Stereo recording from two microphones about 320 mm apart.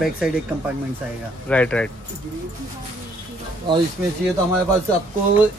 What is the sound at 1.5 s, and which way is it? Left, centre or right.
Speech, centre.